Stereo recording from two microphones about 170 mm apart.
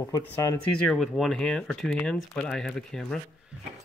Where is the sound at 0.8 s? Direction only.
Centre (ahead or behind).